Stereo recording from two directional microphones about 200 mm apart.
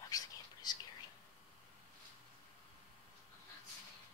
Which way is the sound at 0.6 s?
20° left (ahead or behind).